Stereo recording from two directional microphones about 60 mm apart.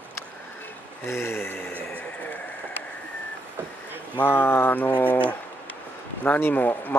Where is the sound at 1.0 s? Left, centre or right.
Left.